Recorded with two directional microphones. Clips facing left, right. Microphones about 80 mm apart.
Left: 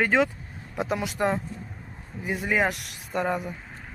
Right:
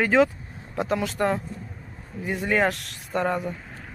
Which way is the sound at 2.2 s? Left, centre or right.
Centre.